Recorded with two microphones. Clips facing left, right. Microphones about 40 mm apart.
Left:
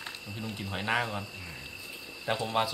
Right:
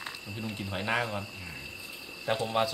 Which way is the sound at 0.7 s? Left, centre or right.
Centre.